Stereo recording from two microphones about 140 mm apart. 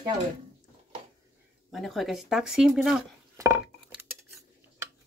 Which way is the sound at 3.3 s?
20° right (ahead or behind).